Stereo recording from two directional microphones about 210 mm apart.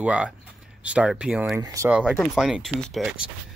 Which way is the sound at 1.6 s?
15° right (ahead or behind).